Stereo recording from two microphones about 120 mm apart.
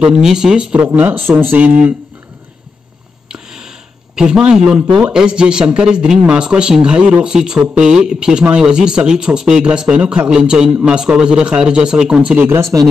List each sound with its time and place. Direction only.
0.0 s speech: 5° right (ahead or behind)
3.3 s a sound: 5° right (ahead or behind)
5.0 s speech: 10° right (ahead or behind)